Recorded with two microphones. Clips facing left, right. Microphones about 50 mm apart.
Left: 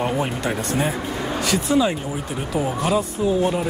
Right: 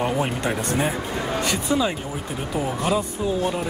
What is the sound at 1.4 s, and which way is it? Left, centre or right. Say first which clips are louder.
Speech: left 4 dB; centre.